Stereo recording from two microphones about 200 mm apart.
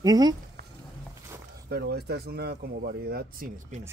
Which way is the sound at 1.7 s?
55° right (ahead or behind).